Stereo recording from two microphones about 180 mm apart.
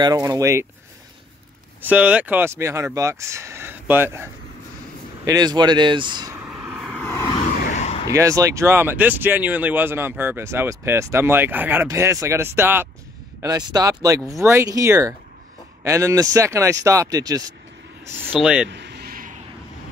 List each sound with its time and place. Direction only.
0.0 s speech: 20° right (ahead or behind)
1.9 s speech: 5° right (ahead or behind); by 6.3 s 25° right (ahead or behind)
6.3 s vehicle: 5° right (ahead or behind)
6.9 s vehicle: 10° left (ahead or behind)
7.7 s a sound: 35° left (ahead or behind)
8.1 s speech: 15° right (ahead or behind)
18.3 s speech: 5° right (ahead or behind)
18.7 s a sound: 75° right (ahead or behind); by 19.3 s 55° right (ahead or behind)